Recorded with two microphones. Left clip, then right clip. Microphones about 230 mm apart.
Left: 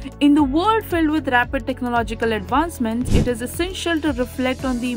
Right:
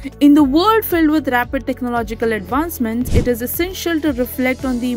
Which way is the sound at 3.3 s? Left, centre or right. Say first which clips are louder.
Right 4 dB; centre.